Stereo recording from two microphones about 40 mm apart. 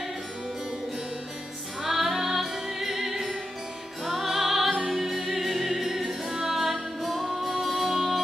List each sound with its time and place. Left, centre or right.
1.8 s music: centre
6.2 s music: centre
6.5 s music: centre